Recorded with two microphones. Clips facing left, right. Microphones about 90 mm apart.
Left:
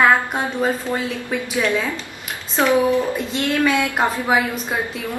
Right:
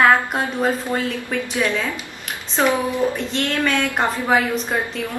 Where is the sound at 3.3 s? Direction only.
10° left (ahead or behind).